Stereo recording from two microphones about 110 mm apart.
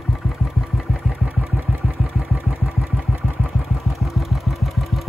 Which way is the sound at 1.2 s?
15° right (ahead or behind).